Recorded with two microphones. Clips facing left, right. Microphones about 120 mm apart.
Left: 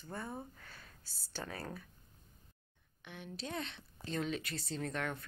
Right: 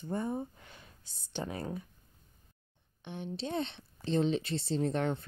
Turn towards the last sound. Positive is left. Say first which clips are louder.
# right 8 dB
turn(degrees=-30)  # may be behind; listen again after turning